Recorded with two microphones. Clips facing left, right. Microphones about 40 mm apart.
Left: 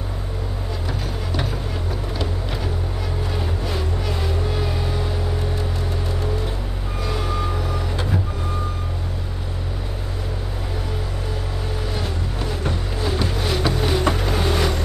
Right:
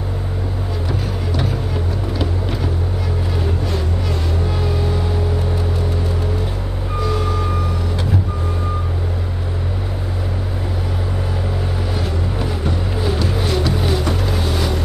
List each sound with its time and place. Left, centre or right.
3.3 s vehicle: centre
7.0 s reversing beeps: centre
12.9 s music: centre
13.5 s music: centre
13.7 s vehicle: centre
14.1 s boat: centre